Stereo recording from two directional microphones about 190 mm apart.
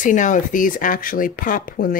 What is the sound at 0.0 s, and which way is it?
Speech, 40° left (ahead or behind).